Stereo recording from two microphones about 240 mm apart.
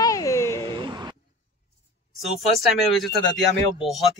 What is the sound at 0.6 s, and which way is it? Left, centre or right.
Speech, centre.